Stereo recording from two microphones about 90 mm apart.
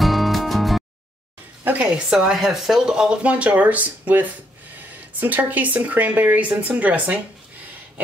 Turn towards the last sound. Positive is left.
turn(degrees=-15)  # may be behind; listen again after turning